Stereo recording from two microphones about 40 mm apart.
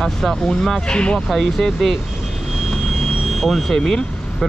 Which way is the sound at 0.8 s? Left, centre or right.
Left.